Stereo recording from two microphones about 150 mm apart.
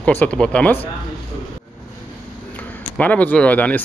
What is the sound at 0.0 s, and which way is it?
Speech, 10° left (ahead or behind).